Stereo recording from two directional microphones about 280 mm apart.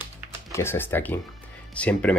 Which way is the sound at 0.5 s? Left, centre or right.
Centre.